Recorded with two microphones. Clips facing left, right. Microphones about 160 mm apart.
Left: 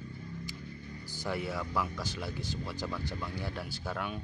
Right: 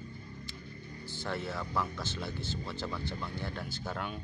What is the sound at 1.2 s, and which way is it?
Speech, 10° left (ahead or behind).